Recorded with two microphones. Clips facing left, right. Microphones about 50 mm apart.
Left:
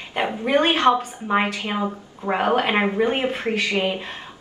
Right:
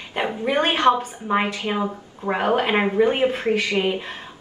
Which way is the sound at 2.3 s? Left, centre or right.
Left.